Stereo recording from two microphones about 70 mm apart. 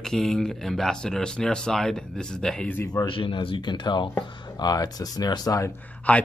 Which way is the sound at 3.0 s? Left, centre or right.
Left.